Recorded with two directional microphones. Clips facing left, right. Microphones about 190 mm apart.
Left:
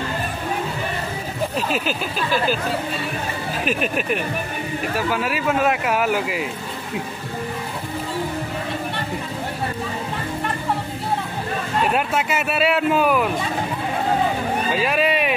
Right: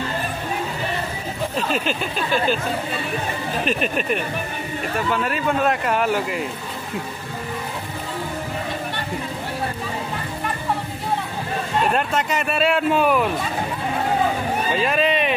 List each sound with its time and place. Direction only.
1.7 s speech: 5° left (ahead or behind)
3.6 s speech: 5° left (ahead or behind)
11.8 s speech: 5° left (ahead or behind)
14.7 s speech: 5° left (ahead or behind)